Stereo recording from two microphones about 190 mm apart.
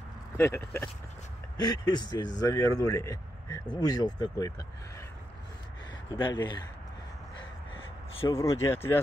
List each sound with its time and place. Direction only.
0.4 s speech: 15° left (ahead or behind)
6.1 s speech: 25° left (ahead or behind)
7.7 s speech: 25° left (ahead or behind)